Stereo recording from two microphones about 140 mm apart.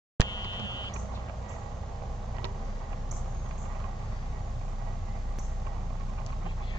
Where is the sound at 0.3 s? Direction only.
30° left (ahead or behind).